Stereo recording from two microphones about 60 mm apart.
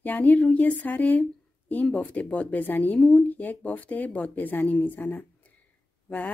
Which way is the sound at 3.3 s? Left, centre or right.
Left.